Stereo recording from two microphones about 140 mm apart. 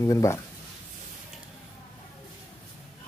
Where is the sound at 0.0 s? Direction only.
20° left (ahead or behind).